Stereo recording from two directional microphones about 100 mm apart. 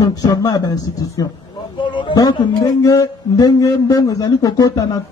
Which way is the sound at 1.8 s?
50° left (ahead or behind).